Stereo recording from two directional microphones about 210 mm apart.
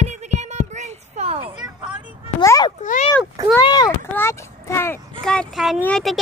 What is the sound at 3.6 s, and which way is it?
A child's voice, 20° left (ahead or behind).